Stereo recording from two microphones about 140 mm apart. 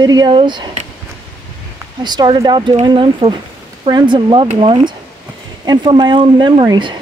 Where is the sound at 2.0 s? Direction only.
30° right (ahead or behind).